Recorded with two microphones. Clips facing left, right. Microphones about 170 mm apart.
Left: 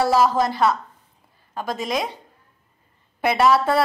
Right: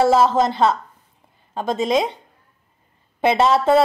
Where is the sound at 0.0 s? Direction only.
25° right (ahead or behind).